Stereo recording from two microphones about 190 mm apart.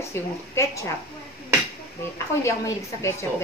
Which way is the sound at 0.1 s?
15° left (ahead or behind).